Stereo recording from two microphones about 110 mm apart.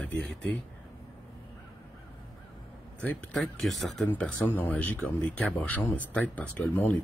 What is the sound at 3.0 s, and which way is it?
Speech, 10° left (ahead or behind).